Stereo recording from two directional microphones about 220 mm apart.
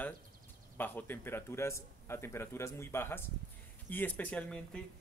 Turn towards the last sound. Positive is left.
turn(degrees=5)  # may be behind; listen again after turning